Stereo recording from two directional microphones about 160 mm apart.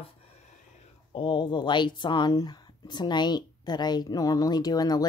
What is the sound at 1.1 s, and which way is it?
Speech, 30° left (ahead or behind).